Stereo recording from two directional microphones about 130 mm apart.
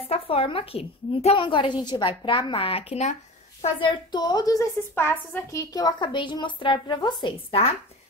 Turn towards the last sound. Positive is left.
turn(degrees=50)  # may be behind; listen again after turning